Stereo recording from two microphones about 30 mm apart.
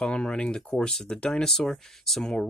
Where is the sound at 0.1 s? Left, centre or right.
Left; by 2.5 s centre.